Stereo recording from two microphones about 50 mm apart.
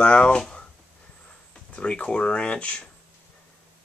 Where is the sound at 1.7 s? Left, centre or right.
Left.